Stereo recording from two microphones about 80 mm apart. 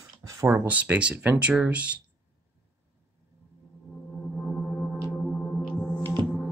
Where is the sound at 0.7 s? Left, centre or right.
Centre.